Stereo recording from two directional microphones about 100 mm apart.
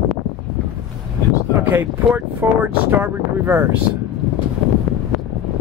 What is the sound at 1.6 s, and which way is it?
Speech, 20° right (ahead or behind).